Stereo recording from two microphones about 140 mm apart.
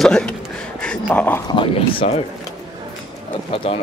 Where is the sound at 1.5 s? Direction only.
40° left (ahead or behind).